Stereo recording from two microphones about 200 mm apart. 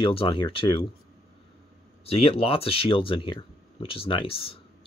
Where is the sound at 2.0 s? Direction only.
30° left (ahead or behind).